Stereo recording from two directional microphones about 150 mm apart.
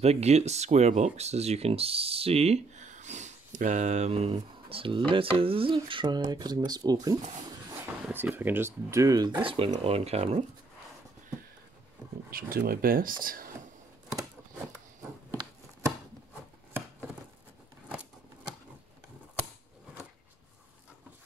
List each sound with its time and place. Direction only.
0.0 s speech: 45° right (ahead or behind); by 7.2 s 25° right (ahead or behind)
8.0 s speech: 10° right (ahead or behind); by 10.4 s 45° right (ahead or behind)
12.3 s speech: 80° right